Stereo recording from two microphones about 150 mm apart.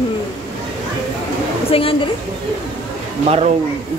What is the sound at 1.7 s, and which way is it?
Speech, 40° left (ahead or behind).